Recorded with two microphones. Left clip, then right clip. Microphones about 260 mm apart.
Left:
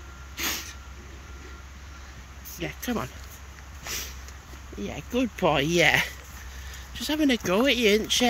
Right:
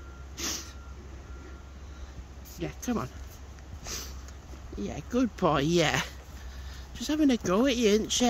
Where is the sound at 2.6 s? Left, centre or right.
Centre.